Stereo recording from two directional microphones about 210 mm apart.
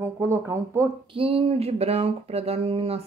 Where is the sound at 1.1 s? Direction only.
25° right (ahead or behind).